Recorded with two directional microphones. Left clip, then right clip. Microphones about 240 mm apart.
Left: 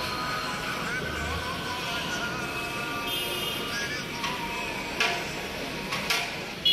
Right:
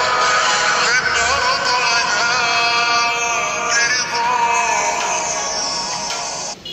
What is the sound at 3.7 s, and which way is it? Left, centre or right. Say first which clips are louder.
Music: right 15 dB; right.